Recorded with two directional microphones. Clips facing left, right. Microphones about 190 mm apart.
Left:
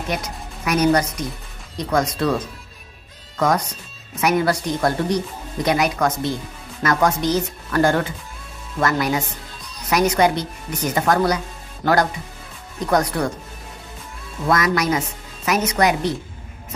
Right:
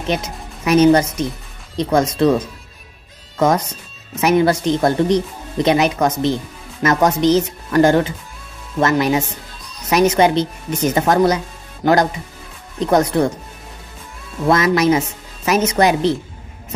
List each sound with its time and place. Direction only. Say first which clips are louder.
0.0 s speech: right 4 dB; 25° right (ahead or behind)
3.3 s speech: right 4 dB; 25° right (ahead or behind)
14.5 s speech: right 5 dB; 25° right (ahead or behind)